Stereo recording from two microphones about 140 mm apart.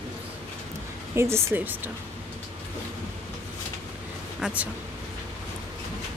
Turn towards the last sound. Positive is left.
turn(degrees=-10)  # may be behind; listen again after turning